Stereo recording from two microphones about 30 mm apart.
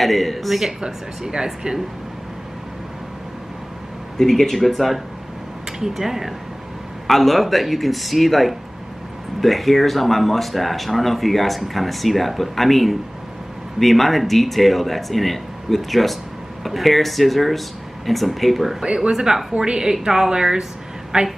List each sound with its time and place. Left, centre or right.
0.0 s speech: centre
0.7 s speech: right
4.2 s speech: centre
4.6 s speech: centre
5.7 s speech: centre
7.1 s speech: centre
19.1 s speech: centre
19.6 s speech: right